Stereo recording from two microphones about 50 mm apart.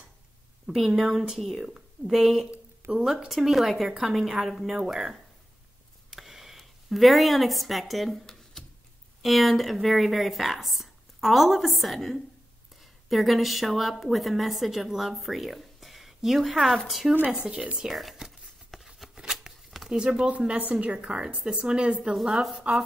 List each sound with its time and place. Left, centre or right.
0.7 s a woman's voice: centre
6.0 s a sound: centre
9.2 s a woman's voice: centre
17.5 s a woman's voice: centre
17.8 s a sound: centre
18.9 s shuffling cards: centre
20.0 s a woman's voice: centre
20.2 s a woman's voice: right
22.6 s a woman's voice: centre